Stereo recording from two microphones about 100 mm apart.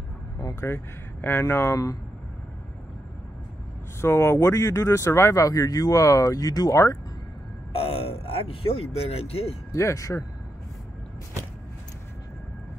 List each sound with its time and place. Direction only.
1.2 s speech: 25° left (ahead or behind)
4.0 s speech: 25° left (ahead or behind)
7.7 s speech: 75° left (ahead or behind)
9.7 s speech: 30° left (ahead or behind)